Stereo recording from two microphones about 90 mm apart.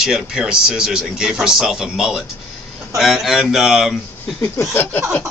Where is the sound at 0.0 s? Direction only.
5° right (ahead or behind).